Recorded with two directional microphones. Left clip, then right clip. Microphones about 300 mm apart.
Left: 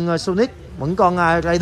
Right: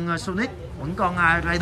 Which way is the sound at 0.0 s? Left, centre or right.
Centre.